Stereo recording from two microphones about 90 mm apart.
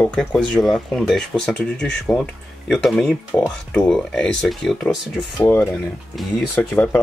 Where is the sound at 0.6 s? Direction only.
5° left (ahead or behind).